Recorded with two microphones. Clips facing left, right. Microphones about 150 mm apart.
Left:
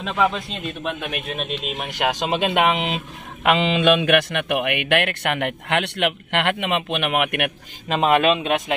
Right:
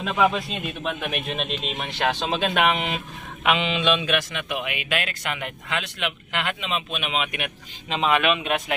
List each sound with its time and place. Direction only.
0.0 s a man's voice: 5° right (ahead or behind); by 2.5 s 15° left (ahead or behind)
3.4 s a man's voice: 45° left (ahead or behind); by 8.0 s 60° left (ahead or behind)
8.0 s speech: 35° left (ahead or behind)